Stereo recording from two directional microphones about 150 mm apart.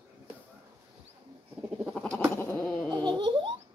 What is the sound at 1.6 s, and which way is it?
Goat, 5° right (ahead or behind).